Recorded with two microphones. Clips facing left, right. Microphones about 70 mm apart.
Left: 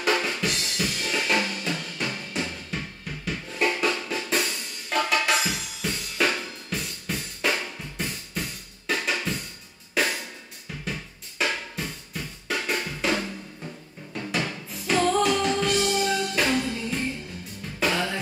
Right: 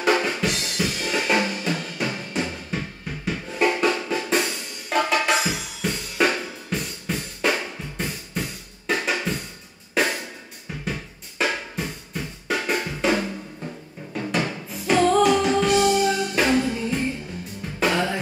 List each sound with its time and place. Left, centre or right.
0.0 s drum: centre
7.4 s drum kit: centre
9.0 s drum: centre
9.9 s music: centre
10.9 s drum: centre
13.7 s music: centre
14.3 s music: centre